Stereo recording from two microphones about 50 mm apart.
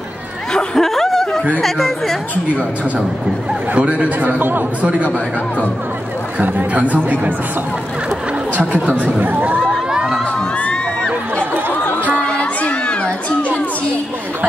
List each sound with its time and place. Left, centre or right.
0.7 s snicker: centre
1.6 s speech: centre
3.7 s speech: right
4.2 s speech: right
6.4 s speech: right
9.2 s speech: right
12.3 s crowd: left